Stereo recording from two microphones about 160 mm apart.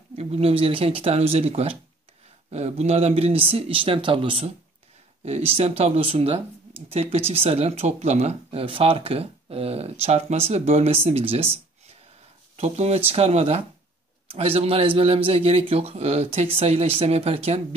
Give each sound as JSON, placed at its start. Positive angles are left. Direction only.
{"t": 0.1, "sound": "speech", "side_deg": -40}